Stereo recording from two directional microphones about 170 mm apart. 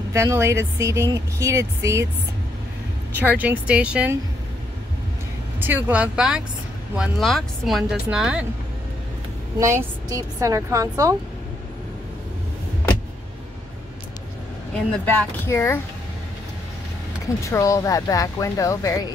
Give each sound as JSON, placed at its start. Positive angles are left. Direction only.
{"t": 0.1, "sound": "speech", "side_deg": -15}
{"t": 3.2, "sound": "speech", "side_deg": -10}
{"t": 5.6, "sound": "speech", "side_deg": -10}
{"t": 9.6, "sound": "a woman's voice", "side_deg": -15}
{"t": 15.0, "sound": "speech", "side_deg": 15}
{"t": 17.5, "sound": "speech", "side_deg": 20}